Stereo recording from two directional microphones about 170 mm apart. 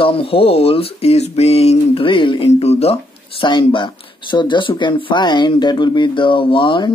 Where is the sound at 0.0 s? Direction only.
30° left (ahead or behind).